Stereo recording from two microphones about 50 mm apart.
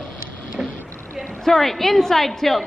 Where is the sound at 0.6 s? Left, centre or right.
Right.